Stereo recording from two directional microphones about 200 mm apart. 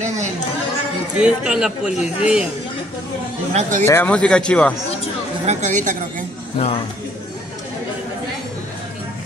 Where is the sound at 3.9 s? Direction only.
10° left (ahead or behind).